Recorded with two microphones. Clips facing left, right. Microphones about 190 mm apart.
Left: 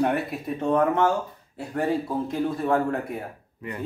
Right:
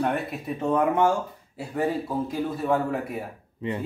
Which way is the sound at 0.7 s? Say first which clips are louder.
Even; 10° right (ahead or behind).